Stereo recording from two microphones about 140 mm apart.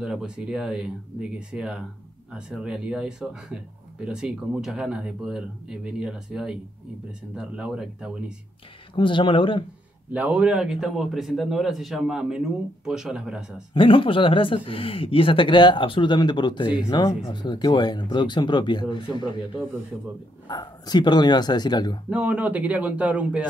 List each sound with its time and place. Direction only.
0.0 s a man's voice: 5° right (ahead or behind)
8.9 s speech: 35° left (ahead or behind)
10.1 s a man's voice: 10° right (ahead or behind)
13.7 s speech: 40° left (ahead or behind)
19.9 s a man's voice: 5° right (ahead or behind)
20.4 s speech: 30° left (ahead or behind)
22.1 s a man's voice: 10° right (ahead or behind)